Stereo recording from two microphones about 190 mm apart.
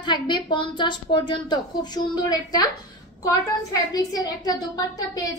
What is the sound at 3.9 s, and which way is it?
A woman's voice, 20° left (ahead or behind).